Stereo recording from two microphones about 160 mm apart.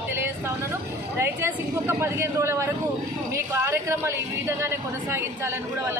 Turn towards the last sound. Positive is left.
turn(degrees=-15)  # may be behind; listen again after turning